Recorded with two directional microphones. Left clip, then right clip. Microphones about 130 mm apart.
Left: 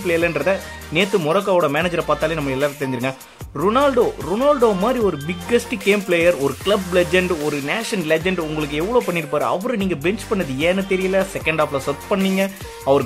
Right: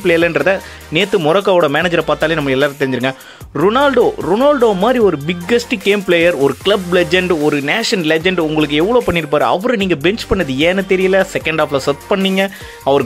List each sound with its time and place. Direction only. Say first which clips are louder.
0.0 s speech: right 6 dB; 35° right (ahead or behind)